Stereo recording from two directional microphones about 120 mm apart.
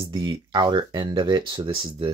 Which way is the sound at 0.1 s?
35° right (ahead or behind).